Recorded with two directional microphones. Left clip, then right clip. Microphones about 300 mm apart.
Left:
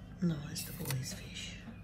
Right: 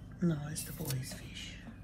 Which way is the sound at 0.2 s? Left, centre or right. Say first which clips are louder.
Right 2 dB; centre.